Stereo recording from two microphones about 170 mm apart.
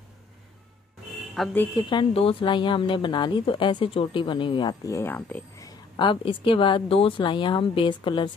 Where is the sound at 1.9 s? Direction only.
30° left (ahead or behind); by 5.4 s 10° left (ahead or behind).